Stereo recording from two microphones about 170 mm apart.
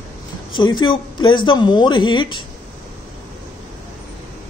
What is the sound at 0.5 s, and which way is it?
Speech, 25° left (ahead or behind).